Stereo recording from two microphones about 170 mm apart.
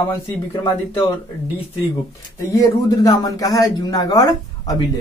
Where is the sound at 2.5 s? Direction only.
20° left (ahead or behind).